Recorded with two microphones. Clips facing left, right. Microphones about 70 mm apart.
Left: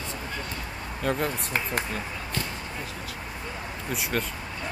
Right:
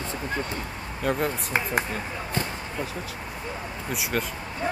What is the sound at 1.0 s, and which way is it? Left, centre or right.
Speech, centre.